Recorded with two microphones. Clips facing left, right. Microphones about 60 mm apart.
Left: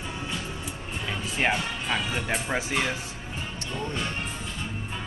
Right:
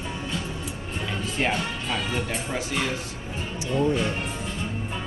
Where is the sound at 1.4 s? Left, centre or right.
Left.